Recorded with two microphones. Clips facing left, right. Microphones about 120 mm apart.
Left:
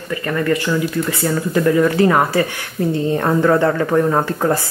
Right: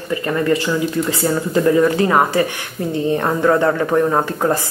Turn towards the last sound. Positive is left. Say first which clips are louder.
# even
turn(degrees=-15)  # may be behind; listen again after turning